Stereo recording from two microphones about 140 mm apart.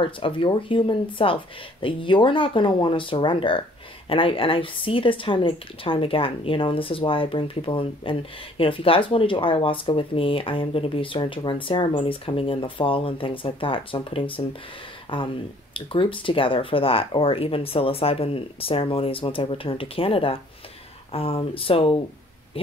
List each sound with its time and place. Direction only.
0.0 s speech: 40° left (ahead or behind)